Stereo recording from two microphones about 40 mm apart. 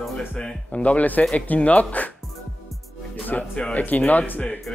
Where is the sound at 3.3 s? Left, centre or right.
Left.